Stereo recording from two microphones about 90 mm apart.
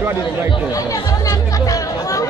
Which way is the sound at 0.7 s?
40° left (ahead or behind).